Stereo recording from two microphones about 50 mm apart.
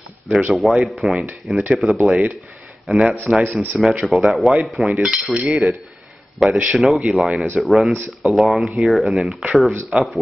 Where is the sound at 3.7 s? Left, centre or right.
Centre.